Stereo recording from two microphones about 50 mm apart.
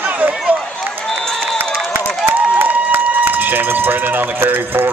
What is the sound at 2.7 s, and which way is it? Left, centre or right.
Speech, right.